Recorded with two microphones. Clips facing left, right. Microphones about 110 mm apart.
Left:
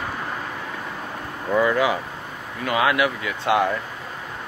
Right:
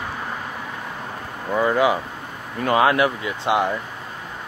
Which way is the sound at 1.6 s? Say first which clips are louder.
Right 2 dB; 25° right (ahead or behind).